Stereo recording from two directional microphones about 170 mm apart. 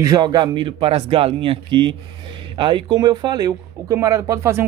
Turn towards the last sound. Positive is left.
turn(degrees=-15)  # may be behind; listen again after turning